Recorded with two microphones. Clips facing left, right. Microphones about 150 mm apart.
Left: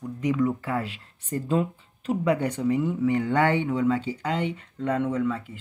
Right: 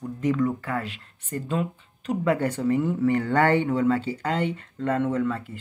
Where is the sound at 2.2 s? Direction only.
15° left (ahead or behind).